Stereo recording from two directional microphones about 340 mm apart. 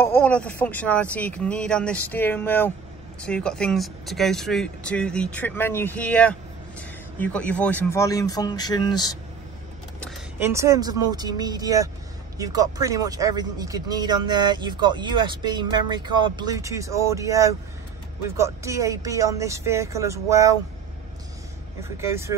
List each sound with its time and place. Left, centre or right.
0.0 s speech: centre
9.9 s a sound: centre
10.5 s speech: centre
21.9 s speech: centre